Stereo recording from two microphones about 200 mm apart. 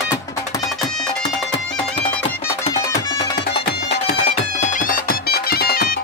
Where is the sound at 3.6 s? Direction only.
55° left (ahead or behind).